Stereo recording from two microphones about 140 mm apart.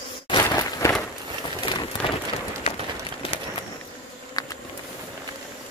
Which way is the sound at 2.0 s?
40° left (ahead or behind).